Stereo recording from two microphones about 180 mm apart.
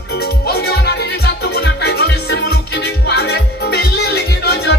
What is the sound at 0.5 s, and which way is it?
Music, 65° left (ahead or behind).